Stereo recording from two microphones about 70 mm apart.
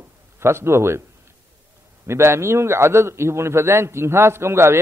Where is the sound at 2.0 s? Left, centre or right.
Right.